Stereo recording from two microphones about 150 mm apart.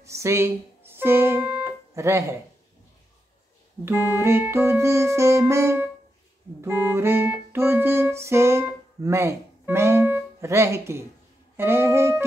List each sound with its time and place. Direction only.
0.0 s speech: 20° right (ahead or behind)
3.8 s music: 15° right (ahead or behind)